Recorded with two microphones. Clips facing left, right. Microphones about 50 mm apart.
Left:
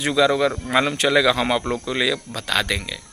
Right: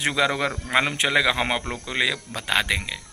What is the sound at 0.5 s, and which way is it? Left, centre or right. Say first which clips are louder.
Speech: left 3 dB; right.